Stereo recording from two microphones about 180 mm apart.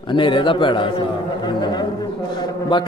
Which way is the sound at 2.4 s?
25° left (ahead or behind).